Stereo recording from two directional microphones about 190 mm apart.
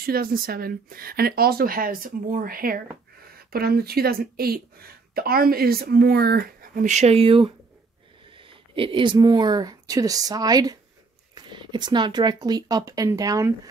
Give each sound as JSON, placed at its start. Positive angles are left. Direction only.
{"t": 0.0, "sound": "speech", "side_deg": -50}